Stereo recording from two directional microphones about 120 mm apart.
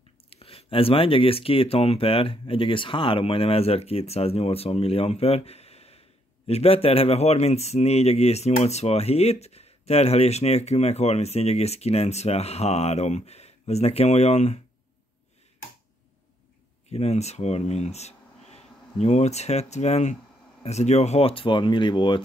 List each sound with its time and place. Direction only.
0.3 s speech: 55° left (ahead or behind)
16.9 s speech: 65° left (ahead or behind); by 22.2 s 40° left (ahead or behind)